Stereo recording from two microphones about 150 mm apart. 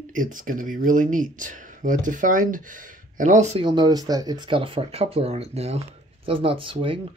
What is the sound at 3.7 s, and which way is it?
Speech, 30° right (ahead or behind).